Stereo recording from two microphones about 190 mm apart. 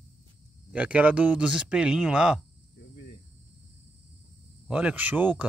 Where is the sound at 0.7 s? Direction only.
5° right (ahead or behind).